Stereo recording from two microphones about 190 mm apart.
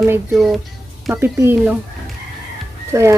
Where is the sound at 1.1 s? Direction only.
10° right (ahead or behind).